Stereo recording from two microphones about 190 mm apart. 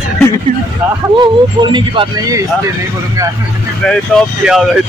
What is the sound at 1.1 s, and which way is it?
Speech, 25° right (ahead or behind).